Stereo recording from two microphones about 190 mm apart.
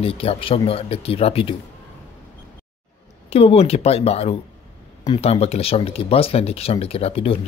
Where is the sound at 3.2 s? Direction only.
35° left (ahead or behind).